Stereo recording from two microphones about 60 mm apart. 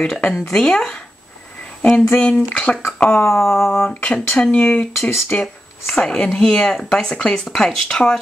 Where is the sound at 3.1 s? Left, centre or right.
Centre.